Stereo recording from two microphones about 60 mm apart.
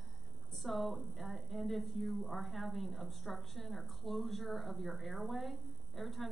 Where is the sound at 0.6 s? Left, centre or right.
Centre.